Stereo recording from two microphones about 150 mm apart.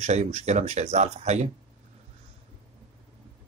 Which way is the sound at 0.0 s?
45° right (ahead or behind).